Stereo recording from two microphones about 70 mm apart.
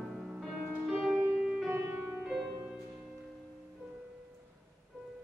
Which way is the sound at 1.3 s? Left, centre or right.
Centre.